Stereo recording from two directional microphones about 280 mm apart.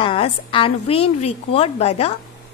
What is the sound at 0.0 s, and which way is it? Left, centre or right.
A woman's voice, centre.